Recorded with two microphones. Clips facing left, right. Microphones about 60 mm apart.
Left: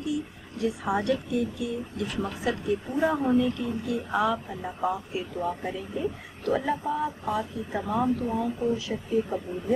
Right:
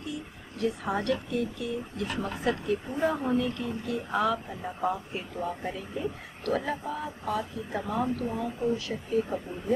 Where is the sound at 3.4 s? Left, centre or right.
Right.